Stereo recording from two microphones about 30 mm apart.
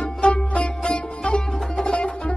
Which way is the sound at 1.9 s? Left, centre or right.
Left.